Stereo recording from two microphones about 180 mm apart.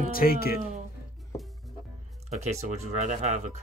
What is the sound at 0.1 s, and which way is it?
Speech, 55° left (ahead or behind).